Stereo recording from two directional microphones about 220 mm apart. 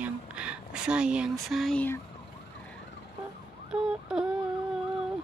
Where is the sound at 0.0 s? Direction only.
5° right (ahead or behind).